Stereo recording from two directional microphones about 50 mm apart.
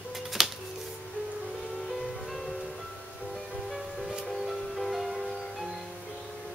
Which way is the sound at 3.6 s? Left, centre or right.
Centre.